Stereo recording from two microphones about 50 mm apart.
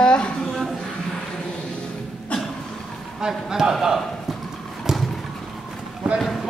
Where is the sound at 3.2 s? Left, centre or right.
Centre.